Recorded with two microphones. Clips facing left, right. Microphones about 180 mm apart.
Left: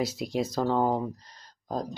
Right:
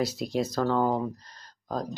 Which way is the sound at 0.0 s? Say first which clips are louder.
Right 1 dB; 15° left (ahead or behind).